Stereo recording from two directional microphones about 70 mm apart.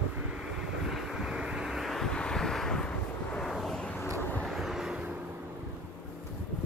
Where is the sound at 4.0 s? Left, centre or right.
Left.